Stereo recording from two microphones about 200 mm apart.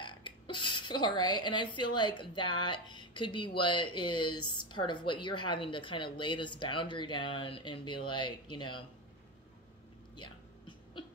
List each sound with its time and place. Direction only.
0.0 s a woman's voice: 25° left (ahead or behind)
4.2 s a woman's voice: 90° left
4.5 s speech: 20° left (ahead or behind)